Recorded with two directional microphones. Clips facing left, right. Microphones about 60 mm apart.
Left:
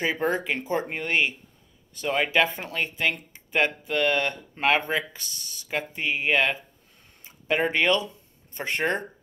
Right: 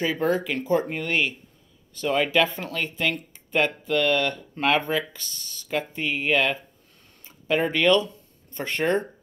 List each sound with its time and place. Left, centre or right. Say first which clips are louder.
0.0 s speech: right 2 dB; left